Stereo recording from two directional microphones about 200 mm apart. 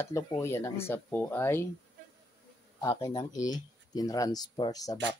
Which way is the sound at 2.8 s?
15° left (ahead or behind).